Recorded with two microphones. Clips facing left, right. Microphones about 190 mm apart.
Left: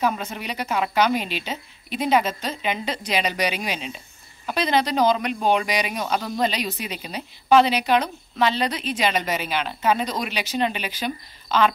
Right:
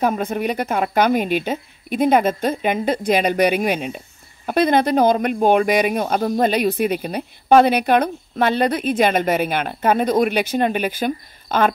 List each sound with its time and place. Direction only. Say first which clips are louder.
0.0 s speech: right 6 dB; 50° right (ahead or behind)